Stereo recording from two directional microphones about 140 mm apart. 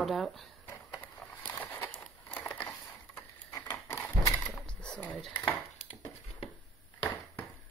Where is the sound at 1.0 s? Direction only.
10° left (ahead or behind).